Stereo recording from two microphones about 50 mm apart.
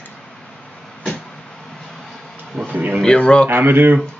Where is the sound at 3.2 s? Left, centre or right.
Centre.